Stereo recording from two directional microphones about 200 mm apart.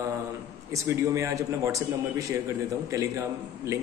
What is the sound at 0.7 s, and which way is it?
A man's voice, 15° right (ahead or behind).